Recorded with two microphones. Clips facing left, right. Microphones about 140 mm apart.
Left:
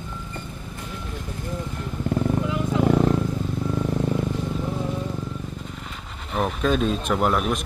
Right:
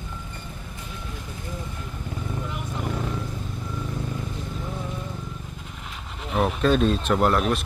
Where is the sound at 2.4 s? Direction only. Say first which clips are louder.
Left 10 dB; 90° left.